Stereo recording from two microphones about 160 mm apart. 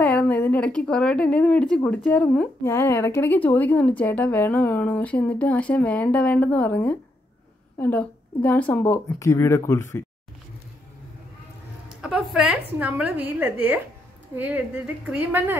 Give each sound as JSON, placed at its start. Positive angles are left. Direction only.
{"t": 0.0, "sound": "a woman's voice", "side_deg": 10}
{"t": 12.0, "sound": "a woman's voice", "side_deg": -5}